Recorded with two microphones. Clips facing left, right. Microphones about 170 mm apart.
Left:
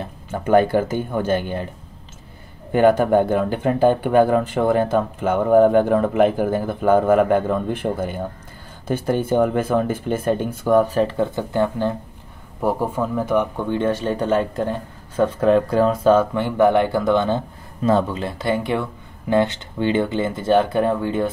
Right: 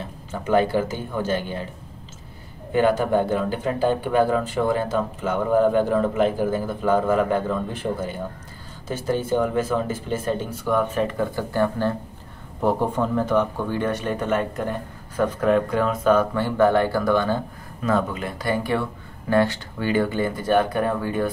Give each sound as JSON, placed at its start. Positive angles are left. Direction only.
{"t": 0.3, "sound": "speech", "side_deg": 55}
{"t": 2.7, "sound": "speech", "side_deg": 55}
{"t": 12.6, "sound": "speech", "side_deg": 5}
{"t": 13.7, "sound": "speech", "side_deg": 25}